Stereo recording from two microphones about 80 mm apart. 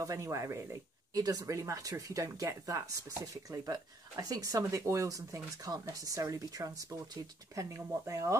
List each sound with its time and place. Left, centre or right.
0.0 s speech: right
1.1 s speech: right